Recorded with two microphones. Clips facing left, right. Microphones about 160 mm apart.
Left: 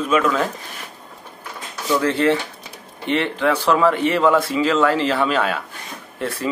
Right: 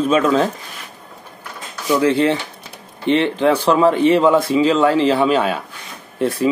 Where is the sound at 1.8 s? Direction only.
20° right (ahead or behind).